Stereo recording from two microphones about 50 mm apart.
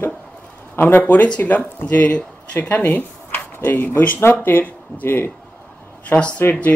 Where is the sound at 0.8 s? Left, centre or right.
Left.